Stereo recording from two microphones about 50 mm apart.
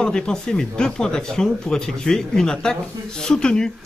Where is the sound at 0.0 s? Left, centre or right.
Centre.